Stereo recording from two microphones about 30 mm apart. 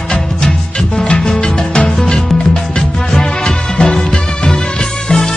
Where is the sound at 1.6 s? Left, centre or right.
Left.